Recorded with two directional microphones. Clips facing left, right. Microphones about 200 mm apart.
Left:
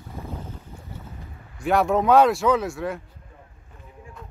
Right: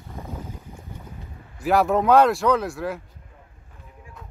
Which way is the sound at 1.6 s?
Centre (ahead or behind).